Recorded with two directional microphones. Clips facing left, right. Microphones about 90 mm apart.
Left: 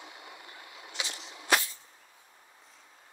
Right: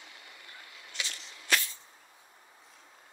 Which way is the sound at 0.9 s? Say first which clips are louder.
Left 2 dB; 15° left (ahead or behind).